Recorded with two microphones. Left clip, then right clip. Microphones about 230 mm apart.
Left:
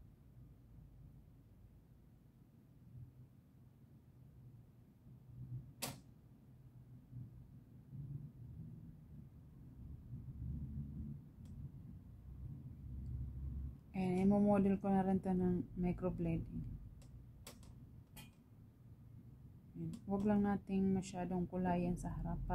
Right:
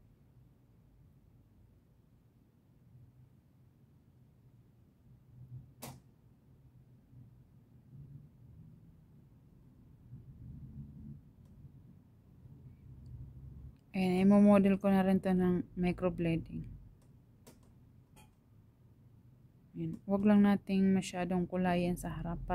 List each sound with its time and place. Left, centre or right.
13.9 s speech: right
20.1 s speech: right